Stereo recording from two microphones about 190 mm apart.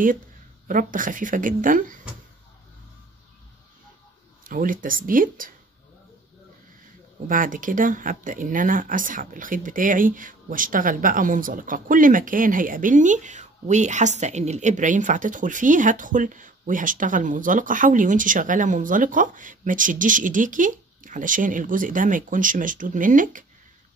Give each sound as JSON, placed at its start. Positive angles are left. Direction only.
{"t": 0.7, "sound": "speech", "side_deg": -45}
{"t": 4.5, "sound": "speech", "side_deg": -45}
{"t": 7.2, "sound": "speech", "side_deg": -45}